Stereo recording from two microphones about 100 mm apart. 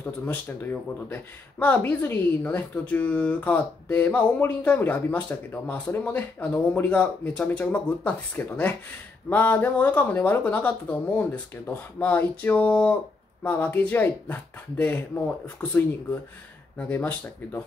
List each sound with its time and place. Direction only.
0.0 s speech: 15° left (ahead or behind)